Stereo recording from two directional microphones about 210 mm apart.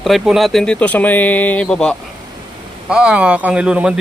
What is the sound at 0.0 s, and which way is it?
Speech, centre (ahead or behind).